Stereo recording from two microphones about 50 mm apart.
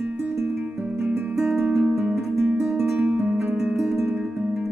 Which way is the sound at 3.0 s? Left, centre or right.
Right.